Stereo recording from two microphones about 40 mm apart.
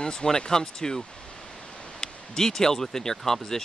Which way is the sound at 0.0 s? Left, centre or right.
Centre.